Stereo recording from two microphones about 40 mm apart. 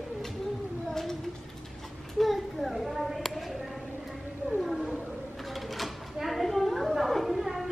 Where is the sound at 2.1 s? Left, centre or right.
Centre.